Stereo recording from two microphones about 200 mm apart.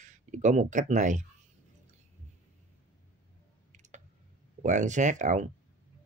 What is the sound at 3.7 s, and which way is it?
Clicking, 35° right (ahead or behind).